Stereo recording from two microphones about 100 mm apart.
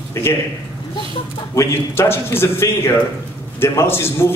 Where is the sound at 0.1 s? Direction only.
25° left (ahead or behind).